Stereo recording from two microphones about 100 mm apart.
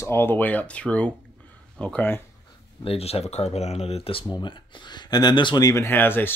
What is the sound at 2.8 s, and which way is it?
Speech, 80° left.